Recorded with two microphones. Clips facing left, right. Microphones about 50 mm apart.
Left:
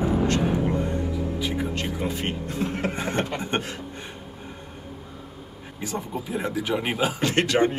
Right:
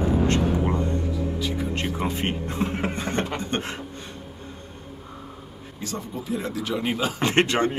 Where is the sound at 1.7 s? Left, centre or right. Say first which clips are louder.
Right 1 dB; right.